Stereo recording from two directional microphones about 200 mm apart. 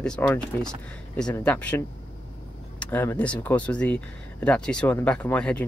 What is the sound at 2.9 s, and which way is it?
Speech, 10° left (ahead or behind).